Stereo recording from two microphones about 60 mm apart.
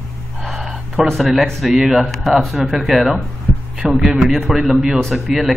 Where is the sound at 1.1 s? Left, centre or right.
Centre.